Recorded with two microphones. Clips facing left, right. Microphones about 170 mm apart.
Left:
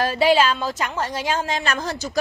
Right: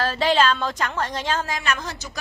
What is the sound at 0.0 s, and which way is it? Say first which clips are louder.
A woman's voice: left 2 dB; 10° left (ahead or behind).